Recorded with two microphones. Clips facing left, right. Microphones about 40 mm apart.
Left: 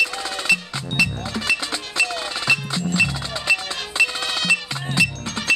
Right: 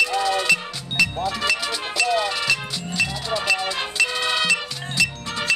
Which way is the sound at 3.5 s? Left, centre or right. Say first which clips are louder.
Left 4 dB; centre.